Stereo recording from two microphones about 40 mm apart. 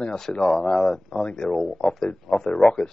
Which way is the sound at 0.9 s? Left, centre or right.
Centre.